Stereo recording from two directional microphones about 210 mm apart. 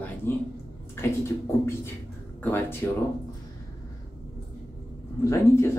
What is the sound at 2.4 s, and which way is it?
Speech, 10° left (ahead or behind).